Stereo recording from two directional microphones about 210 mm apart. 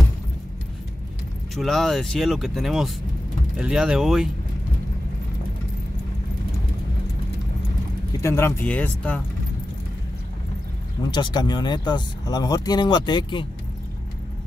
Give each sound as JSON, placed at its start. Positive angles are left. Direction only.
{"t": 1.5, "sound": "speech", "side_deg": 0}
{"t": 8.2, "sound": "speech", "side_deg": 10}
{"t": 11.1, "sound": "speech", "side_deg": 20}